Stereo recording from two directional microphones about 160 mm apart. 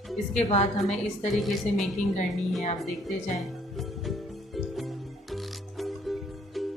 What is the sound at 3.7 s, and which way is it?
Music, centre (ahead or behind).